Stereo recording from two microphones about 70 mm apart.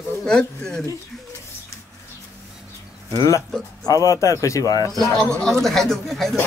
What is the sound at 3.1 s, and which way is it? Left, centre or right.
Speech, left.